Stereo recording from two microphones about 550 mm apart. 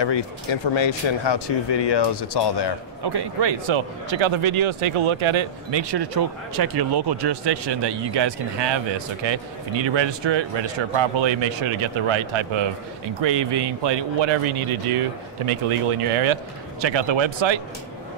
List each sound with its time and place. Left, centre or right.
0.0 s speech: left
3.0 s speech: right